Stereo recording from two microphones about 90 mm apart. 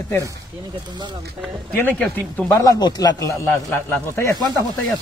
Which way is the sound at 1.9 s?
20° left (ahead or behind).